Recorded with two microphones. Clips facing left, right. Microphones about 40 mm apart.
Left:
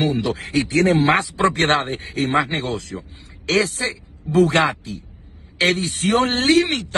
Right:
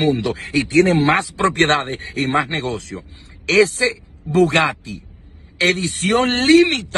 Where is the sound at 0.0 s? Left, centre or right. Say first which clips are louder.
Right 2 dB; right.